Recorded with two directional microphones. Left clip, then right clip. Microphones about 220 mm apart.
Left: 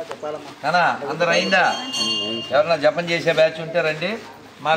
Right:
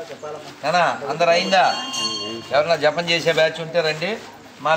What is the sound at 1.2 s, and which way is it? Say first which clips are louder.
Speech: right 2 dB; 45° right (ahead or behind).